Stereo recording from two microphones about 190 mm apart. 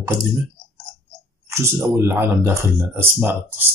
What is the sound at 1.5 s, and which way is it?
Speech, 15° right (ahead or behind).